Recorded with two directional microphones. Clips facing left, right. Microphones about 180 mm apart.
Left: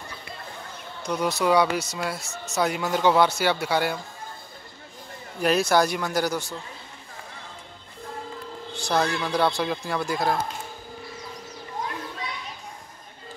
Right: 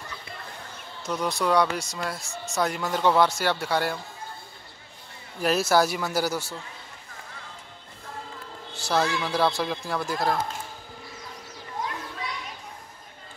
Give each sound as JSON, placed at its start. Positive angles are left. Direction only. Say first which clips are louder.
{"t": 1.0, "sound": "speech", "louder": "left 3 dB", "side_deg": 0}
{"t": 5.4, "sound": "speech", "louder": "left 1 dB", "side_deg": -5}
{"t": 8.7, "sound": "a man's voice", "louder": "left 1 dB", "side_deg": -5}